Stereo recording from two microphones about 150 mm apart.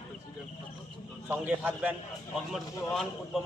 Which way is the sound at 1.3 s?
10° right (ahead or behind).